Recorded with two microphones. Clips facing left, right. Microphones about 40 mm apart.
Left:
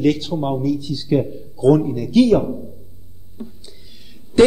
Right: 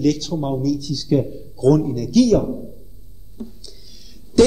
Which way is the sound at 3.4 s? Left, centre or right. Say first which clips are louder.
Even; left.